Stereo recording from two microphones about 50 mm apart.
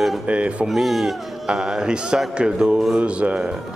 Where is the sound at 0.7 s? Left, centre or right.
Centre.